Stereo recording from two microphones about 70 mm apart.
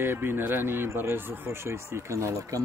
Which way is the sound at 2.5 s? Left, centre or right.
Right.